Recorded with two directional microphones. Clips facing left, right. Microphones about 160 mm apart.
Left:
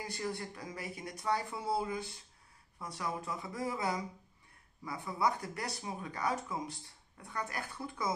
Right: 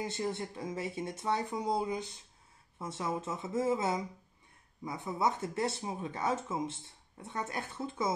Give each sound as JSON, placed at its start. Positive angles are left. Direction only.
{"t": 0.0, "sound": "speech", "side_deg": -20}